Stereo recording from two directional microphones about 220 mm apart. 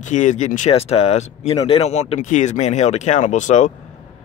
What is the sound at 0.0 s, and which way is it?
Speech, 35° left (ahead or behind).